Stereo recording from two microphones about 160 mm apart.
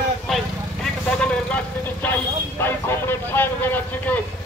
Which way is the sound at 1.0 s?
10° left (ahead or behind).